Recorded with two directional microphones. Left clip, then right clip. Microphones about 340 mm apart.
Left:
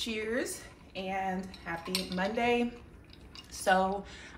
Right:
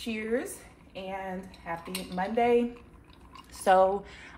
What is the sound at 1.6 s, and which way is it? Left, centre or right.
Speech, centre.